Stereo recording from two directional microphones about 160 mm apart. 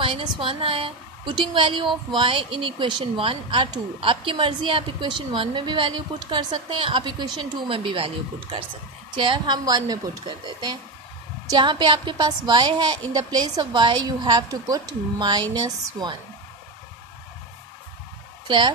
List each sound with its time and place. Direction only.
0.0 s a woman's voice: 30° right (ahead or behind)